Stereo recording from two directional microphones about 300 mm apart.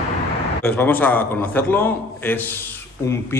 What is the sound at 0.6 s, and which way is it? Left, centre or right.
A man's voice, centre.